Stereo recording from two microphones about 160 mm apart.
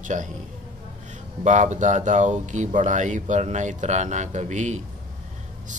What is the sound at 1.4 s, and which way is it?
Speech, 50° right (ahead or behind).